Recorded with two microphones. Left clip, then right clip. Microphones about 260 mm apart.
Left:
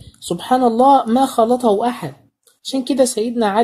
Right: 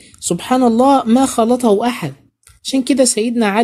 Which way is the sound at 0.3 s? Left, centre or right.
Right.